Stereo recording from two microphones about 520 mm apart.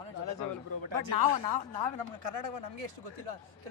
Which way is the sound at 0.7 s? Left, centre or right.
Right.